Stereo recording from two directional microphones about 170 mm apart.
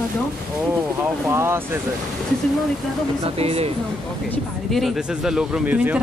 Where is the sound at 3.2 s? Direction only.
35° right (ahead or behind).